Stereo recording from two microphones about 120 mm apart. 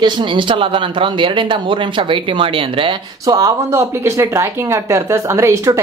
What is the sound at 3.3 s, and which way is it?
Speech, 25° right (ahead or behind).